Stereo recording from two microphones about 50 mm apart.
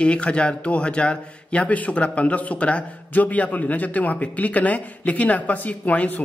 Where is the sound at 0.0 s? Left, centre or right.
Left.